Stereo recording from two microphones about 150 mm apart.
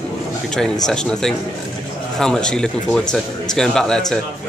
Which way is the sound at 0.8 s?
5° left (ahead or behind).